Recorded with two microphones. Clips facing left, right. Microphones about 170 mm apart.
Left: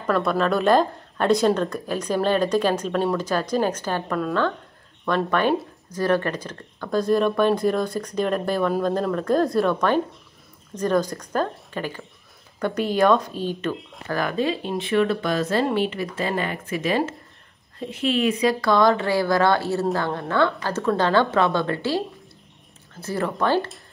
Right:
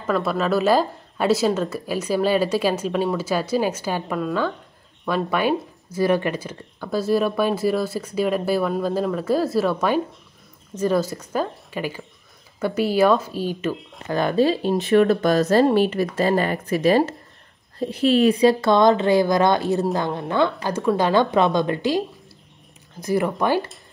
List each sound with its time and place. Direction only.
0.0 s a woman's voice: centre (ahead or behind)
14.0 s speech: 20° right (ahead or behind)
14.3 s speech: 35° right (ahead or behind); by 23.7 s 15° right (ahead or behind)